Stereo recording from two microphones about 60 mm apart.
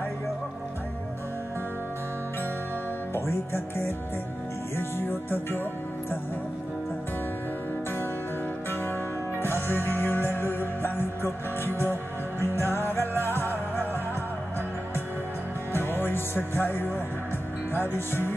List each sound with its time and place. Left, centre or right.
3.2 s music: left
9.4 s music: left
15.7 s music: left